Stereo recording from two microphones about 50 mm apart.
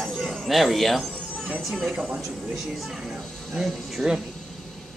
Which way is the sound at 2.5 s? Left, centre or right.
Centre.